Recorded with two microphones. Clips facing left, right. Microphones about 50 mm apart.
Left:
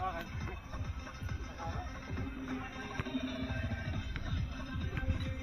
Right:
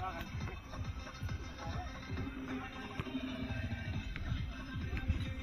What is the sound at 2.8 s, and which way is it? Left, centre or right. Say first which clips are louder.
Music: left 3 dB; left.